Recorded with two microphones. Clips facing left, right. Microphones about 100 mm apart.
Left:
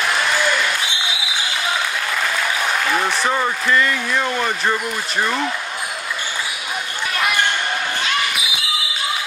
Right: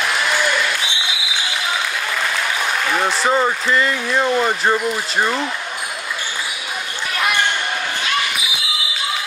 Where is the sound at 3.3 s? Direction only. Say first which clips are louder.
Right 1 dB; 25° right (ahead or behind).